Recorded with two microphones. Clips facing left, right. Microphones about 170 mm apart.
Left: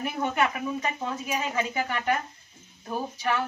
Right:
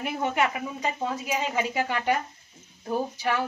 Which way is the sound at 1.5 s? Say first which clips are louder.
Right 1 dB; 15° right (ahead or behind).